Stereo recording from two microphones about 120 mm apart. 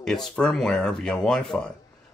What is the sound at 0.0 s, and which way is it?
Speech, 5° left (ahead or behind).